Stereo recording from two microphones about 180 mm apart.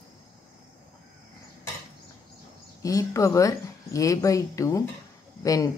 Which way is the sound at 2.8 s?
20° left (ahead or behind).